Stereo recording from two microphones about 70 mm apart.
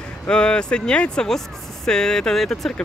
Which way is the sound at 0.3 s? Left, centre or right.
Centre.